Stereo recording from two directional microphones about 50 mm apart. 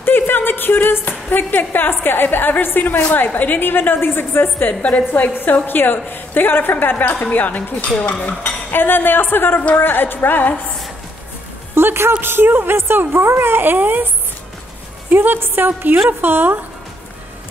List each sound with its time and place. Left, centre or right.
0.0 s a woman's voice: left
4.8 s a woman's voice: left
8.0 s cutlery: left
8.3 s a woman's voice: left
11.7 s a woman's voice: right
15.1 s speech: right